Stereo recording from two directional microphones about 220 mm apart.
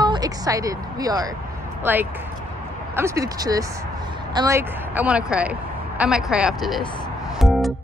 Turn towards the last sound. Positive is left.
turn(degrees=0)  # may be behind; listen again after turning